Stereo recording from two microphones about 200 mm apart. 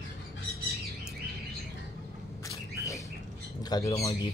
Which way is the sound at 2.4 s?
15° left (ahead or behind).